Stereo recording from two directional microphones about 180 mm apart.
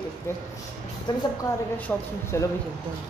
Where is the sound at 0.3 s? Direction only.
15° left (ahead or behind).